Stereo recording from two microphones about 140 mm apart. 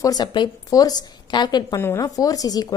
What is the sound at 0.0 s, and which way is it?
A woman's voice, 30° left (ahead or behind).